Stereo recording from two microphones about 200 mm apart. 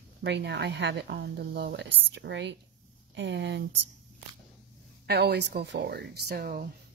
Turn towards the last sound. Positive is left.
turn(degrees=-50)  # may be behind; listen again after turning